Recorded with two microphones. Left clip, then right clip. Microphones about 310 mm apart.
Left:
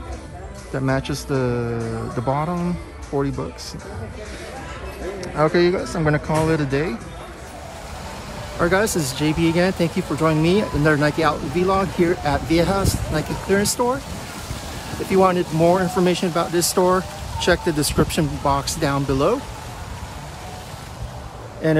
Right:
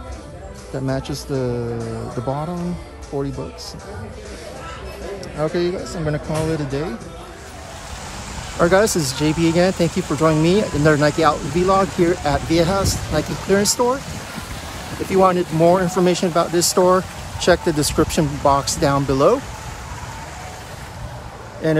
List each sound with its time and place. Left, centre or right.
0.7 s speech: centre
2.2 s speech: centre
5.2 s speech: centre
8.5 s speech: centre
15.1 s speech: centre
21.6 s speech: centre